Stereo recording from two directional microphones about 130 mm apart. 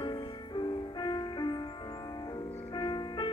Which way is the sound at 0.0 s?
35° left (ahead or behind).